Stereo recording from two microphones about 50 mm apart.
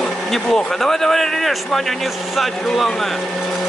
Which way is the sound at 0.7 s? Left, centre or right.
Centre.